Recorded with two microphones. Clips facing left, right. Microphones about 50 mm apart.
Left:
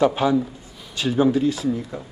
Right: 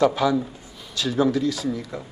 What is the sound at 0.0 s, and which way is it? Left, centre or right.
A man's voice, left.